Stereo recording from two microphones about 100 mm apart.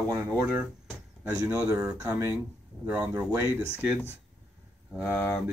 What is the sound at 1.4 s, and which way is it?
Speech, 25° right (ahead or behind).